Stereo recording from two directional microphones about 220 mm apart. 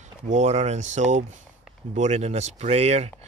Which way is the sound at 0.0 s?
30° right (ahead or behind).